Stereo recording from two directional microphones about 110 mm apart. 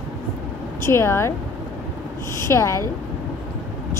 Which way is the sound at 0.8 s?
25° left (ahead or behind).